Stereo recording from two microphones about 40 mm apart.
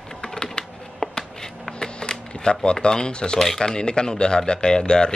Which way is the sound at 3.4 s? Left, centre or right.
Centre.